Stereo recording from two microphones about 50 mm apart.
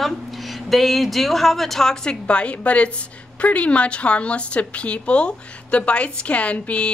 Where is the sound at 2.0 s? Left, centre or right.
Left.